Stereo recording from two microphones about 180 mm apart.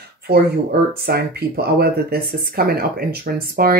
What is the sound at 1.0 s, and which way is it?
Speech, 60° right (ahead or behind).